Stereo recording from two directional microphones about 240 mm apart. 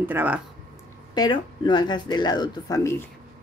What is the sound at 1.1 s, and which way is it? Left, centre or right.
Speech, centre.